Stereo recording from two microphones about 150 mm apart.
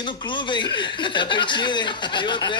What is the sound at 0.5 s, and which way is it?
Speech, 30° left (ahead or behind).